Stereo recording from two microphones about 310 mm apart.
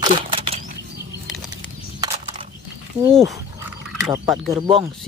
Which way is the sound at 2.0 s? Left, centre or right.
Centre.